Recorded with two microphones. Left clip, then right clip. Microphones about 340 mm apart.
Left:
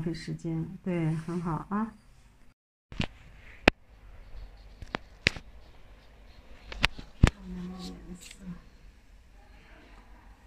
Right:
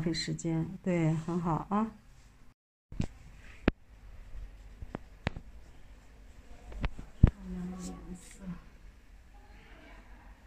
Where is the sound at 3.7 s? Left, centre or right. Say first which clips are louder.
Left 10 dB; left.